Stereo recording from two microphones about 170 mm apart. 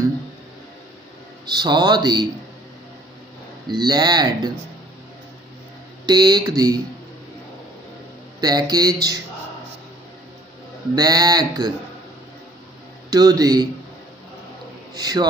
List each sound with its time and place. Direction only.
1.4 s speech: 25° right (ahead or behind)
3.6 s speech: 25° right (ahead or behind)
6.0 s speech: 25° right (ahead or behind)
8.4 s speech: 25° right (ahead or behind)
11.0 s speech: 25° right (ahead or behind)
13.1 s speech: 20° right (ahead or behind)
15.0 s speech: 25° right (ahead or behind)